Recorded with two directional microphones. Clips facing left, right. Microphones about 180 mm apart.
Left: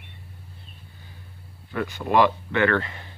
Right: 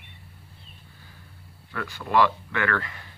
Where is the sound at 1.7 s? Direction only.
20° left (ahead or behind).